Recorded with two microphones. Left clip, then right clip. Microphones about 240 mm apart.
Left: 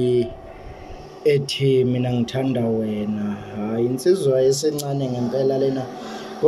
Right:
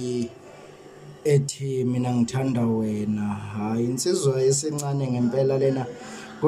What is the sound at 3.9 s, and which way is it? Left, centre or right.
A man's voice, right.